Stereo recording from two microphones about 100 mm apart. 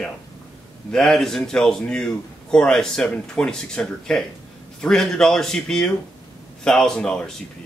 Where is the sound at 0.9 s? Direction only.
5° left (ahead or behind).